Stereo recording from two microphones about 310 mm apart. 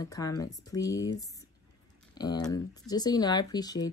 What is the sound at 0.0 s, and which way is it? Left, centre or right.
Speech, centre.